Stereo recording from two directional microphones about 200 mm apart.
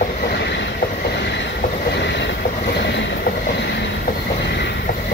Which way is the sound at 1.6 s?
55° left (ahead or behind).